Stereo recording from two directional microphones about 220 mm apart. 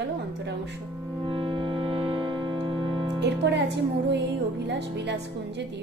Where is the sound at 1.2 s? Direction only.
20° right (ahead or behind).